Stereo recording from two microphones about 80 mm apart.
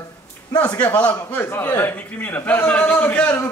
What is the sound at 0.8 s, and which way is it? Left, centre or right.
Speech, centre.